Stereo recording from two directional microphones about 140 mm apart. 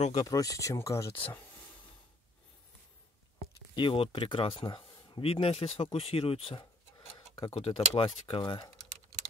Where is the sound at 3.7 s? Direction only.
35° left (ahead or behind).